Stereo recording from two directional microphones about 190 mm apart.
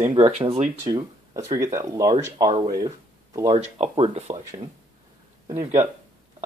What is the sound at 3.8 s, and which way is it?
Speech, 30° right (ahead or behind).